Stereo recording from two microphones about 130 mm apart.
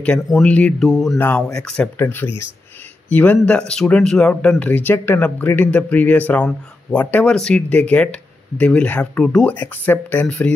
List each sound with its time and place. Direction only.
0.0 s speech: 5° left (ahead or behind)
1.1 s speech: 15° left (ahead or behind)